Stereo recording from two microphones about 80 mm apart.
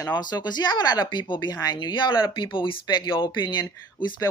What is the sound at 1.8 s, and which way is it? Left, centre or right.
Speech, left.